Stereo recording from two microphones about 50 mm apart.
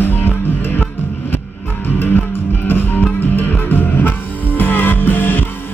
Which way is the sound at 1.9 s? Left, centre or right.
Left.